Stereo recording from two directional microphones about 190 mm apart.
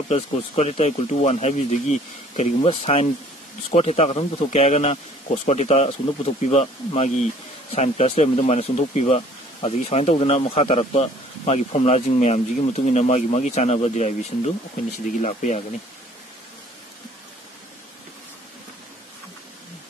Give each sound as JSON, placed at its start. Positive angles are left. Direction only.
{"t": 0.1, "sound": "speech", "side_deg": 35}